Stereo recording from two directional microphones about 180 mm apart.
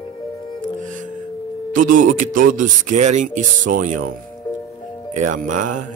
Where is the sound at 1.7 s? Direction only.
45° right (ahead or behind).